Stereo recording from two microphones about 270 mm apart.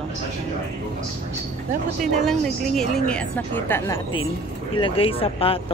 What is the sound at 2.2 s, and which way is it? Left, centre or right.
Speech, centre.